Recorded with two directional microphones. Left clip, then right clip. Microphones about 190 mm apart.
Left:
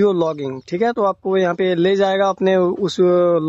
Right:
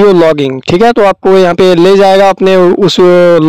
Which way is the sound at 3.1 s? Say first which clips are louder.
Right 10 dB; 55° right (ahead or behind).